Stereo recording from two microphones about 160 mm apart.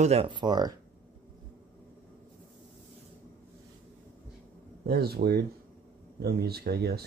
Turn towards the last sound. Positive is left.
turn(degrees=-80)